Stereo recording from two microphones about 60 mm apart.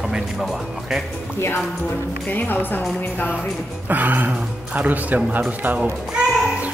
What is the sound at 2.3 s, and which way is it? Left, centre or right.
Speech, left.